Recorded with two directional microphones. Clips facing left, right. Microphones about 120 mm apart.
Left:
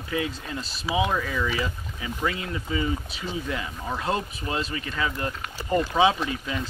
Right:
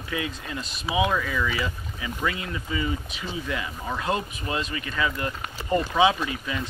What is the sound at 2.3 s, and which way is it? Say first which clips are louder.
Speech: left 1 dB; 30° left (ahead or behind).